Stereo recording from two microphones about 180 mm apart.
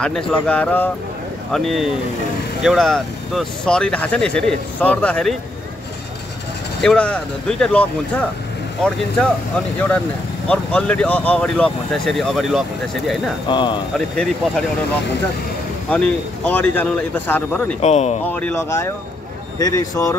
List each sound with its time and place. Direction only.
0.0 s speech: 5° left (ahead or behind)
6.8 s speech: 5° left (ahead or behind)
9.8 s speech: 10° left (ahead or behind)
13.5 s speech: 25° left (ahead or behind)
13.9 s speech: centre (ahead or behind)
15.9 s speech: 10° left (ahead or behind)
17.8 s speech: 35° left (ahead or behind)
18.2 s speech: 10° left (ahead or behind)